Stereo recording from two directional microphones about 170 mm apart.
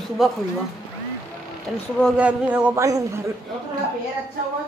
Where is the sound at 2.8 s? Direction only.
20° right (ahead or behind).